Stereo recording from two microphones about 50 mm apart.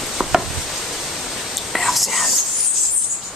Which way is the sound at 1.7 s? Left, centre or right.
Centre.